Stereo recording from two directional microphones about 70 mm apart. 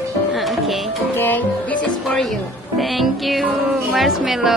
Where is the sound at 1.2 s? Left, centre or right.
Left.